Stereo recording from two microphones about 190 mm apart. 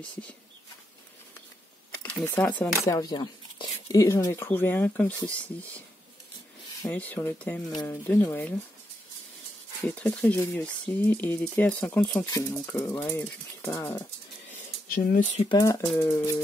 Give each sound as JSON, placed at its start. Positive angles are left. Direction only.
{"t": 2.0, "sound": "speech", "side_deg": 10}
{"t": 6.9, "sound": "speech", "side_deg": 10}
{"t": 9.8, "sound": "speech", "side_deg": 5}
{"t": 14.5, "sound": "a sound", "side_deg": 50}
{"t": 15.4, "sound": "speech", "side_deg": 20}